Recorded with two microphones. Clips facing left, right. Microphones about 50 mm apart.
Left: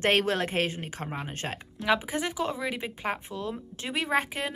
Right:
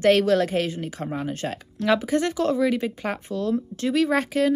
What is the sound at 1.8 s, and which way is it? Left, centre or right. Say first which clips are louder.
Speech: right 6 dB; centre.